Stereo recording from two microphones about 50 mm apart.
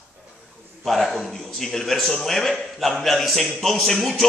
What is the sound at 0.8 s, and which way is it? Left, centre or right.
A man's voice, centre.